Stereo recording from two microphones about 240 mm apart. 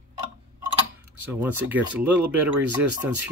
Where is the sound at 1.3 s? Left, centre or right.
Centre.